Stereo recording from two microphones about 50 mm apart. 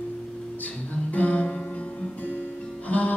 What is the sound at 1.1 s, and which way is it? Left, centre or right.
Music, left.